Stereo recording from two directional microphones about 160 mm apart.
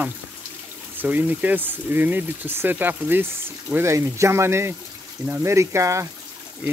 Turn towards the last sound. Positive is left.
turn(degrees=-20)  # may be behind; listen again after turning